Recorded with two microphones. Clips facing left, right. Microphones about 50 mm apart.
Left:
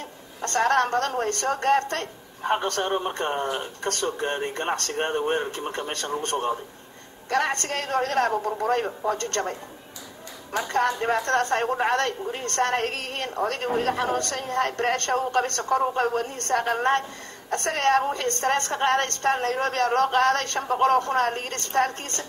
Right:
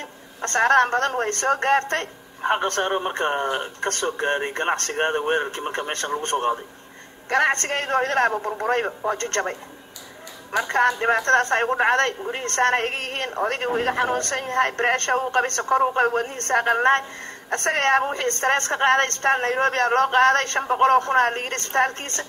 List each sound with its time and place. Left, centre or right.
0.4 s a woman's voice: right